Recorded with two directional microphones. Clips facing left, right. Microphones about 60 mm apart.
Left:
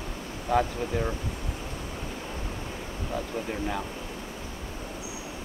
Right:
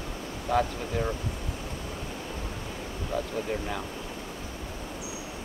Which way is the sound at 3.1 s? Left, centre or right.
Centre.